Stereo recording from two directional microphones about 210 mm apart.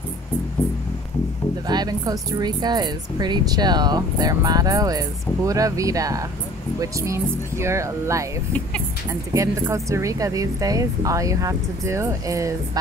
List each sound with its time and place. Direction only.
1.7 s speech: 20° right (ahead or behind)
9.3 s speech: 15° right (ahead or behind)